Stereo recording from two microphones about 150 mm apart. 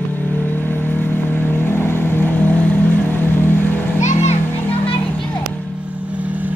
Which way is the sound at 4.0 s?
50° left (ahead or behind).